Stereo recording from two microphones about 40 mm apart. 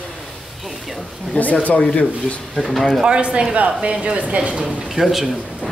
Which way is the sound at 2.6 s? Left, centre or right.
Centre.